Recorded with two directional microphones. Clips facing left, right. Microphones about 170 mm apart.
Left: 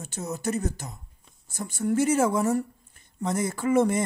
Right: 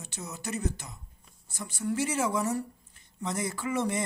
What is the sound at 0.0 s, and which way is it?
Speech, 45° left (ahead or behind).